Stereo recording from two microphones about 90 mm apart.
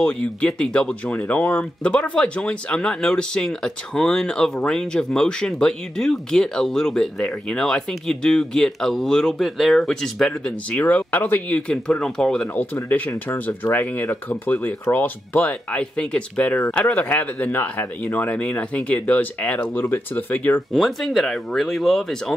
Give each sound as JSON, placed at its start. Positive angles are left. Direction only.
{"t": 0.0, "sound": "speech", "side_deg": 10}
{"t": 12.9, "sound": "speech", "side_deg": 20}
{"t": 20.7, "sound": "speech", "side_deg": 0}